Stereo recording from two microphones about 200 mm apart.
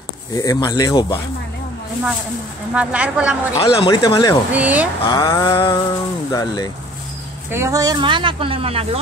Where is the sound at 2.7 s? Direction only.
5° right (ahead or behind).